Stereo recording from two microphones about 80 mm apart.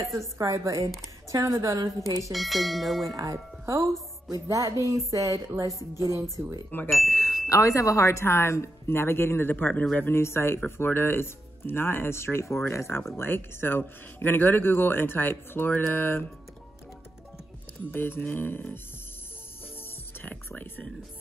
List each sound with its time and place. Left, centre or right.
0.4 s speech: right
2.3 s speech: centre
3.1 s speech: right
6.4 s speech: right
6.9 s bicycle bell: centre
7.4 s speech: left
17.9 s speech: left
20.2 s speech: left